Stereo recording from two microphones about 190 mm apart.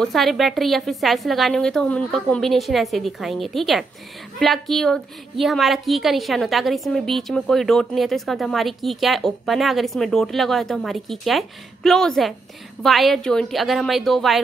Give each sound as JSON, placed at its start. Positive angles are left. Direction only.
{"t": 0.0, "sound": "a woman's voice", "side_deg": 0}